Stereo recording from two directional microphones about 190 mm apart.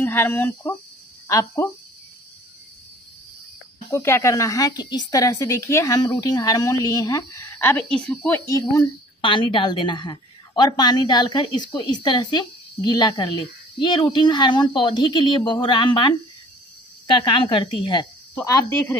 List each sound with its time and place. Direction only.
0.0 s a woman's voice: 10° left (ahead or behind)
3.9 s a woman's voice: 15° left (ahead or behind)
8.5 s a woman's voice: 15° left (ahead or behind)